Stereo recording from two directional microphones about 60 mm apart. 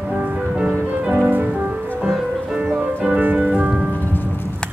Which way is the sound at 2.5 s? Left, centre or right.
Centre.